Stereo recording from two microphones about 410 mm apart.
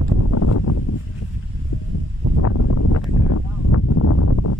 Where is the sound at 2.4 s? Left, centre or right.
Left.